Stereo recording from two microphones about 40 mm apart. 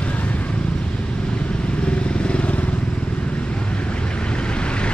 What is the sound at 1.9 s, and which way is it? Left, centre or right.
Vehicle, left.